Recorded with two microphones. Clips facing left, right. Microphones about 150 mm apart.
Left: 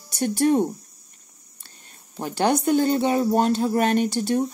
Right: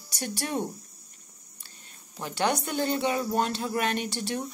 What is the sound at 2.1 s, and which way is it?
Speech, 40° left (ahead or behind).